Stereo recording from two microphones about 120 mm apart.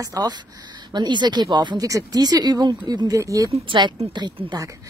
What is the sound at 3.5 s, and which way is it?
Speech, 40° right (ahead or behind).